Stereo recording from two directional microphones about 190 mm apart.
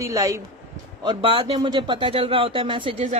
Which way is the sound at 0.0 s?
15° right (ahead or behind).